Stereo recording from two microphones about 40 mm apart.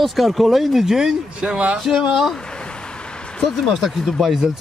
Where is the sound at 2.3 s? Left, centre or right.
Left.